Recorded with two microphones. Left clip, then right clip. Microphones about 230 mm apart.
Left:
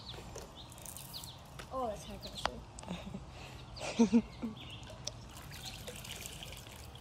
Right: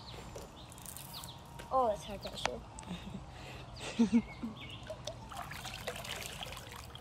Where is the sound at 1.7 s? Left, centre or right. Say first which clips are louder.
Right 8 dB; right.